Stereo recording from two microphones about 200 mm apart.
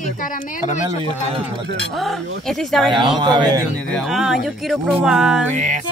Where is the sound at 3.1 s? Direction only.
20° right (ahead or behind).